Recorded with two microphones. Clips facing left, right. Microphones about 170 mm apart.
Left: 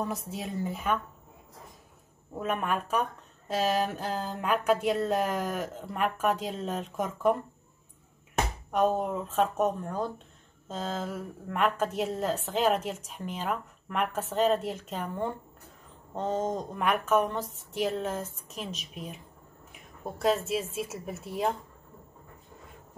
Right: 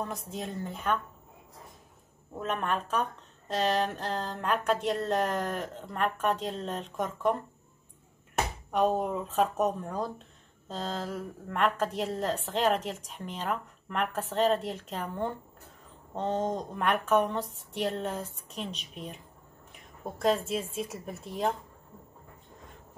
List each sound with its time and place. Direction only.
0.0 s a woman's voice: 5° left (ahead or behind)
2.3 s speech: 5° left (ahead or behind)
8.7 s a woman's voice: centre (ahead or behind)